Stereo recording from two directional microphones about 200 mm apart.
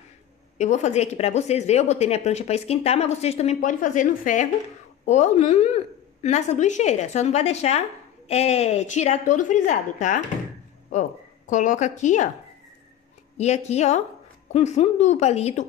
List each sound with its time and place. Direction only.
0.6 s a woman's voice: 35° left (ahead or behind)
13.4 s a woman's voice: 35° left (ahead or behind)